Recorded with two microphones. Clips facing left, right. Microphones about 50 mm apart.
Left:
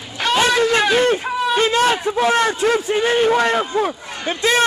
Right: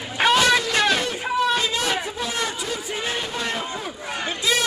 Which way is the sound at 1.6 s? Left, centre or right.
Left.